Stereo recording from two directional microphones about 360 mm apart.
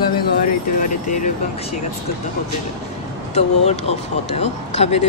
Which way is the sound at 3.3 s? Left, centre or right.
Centre.